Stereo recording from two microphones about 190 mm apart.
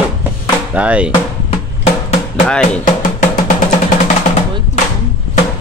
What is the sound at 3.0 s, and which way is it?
Drum, 45° left (ahead or behind).